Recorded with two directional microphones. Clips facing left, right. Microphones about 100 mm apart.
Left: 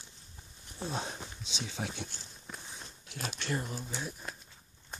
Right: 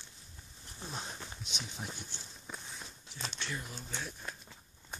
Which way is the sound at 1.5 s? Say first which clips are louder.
Left 1 dB; 90° left.